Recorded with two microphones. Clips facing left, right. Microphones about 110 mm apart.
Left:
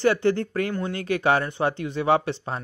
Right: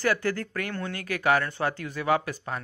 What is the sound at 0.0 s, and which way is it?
Speech, 25° left (ahead or behind).